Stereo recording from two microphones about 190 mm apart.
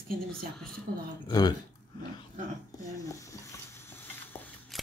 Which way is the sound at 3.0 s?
15° left (ahead or behind).